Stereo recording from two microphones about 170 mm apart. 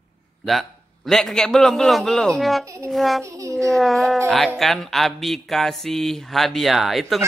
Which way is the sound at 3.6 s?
Centre (ahead or behind).